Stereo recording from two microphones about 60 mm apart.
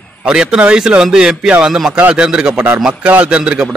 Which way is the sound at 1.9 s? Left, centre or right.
Centre.